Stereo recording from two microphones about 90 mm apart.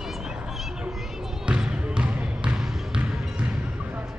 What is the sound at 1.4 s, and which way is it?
Basketball bounce, 10° right (ahead or behind).